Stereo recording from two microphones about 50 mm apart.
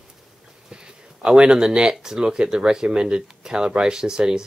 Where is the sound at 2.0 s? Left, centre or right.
Centre.